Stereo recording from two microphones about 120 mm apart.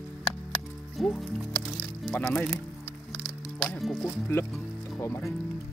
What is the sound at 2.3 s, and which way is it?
Speech, centre (ahead or behind).